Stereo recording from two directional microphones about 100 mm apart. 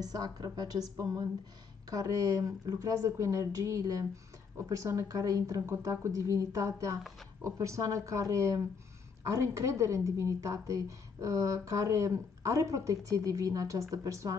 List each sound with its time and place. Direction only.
0.0 s a woman's voice: 40° right (ahead or behind)
7.0 s speech: centre (ahead or behind)
7.4 s a woman's voice: 30° right (ahead or behind)